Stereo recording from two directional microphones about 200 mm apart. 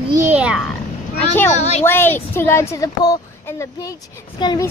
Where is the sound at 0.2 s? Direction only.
5° right (ahead or behind).